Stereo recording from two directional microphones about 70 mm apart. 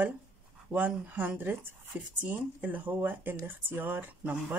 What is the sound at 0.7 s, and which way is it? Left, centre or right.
Speech, right.